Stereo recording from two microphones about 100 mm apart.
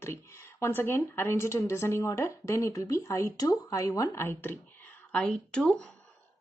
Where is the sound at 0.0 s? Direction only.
25° left (ahead or behind).